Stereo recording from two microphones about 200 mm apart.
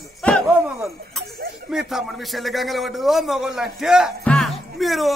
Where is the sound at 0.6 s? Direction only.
15° right (ahead or behind).